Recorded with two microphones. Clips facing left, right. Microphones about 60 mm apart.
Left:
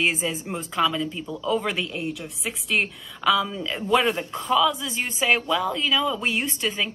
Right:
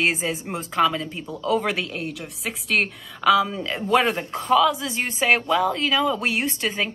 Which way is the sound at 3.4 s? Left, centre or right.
Centre.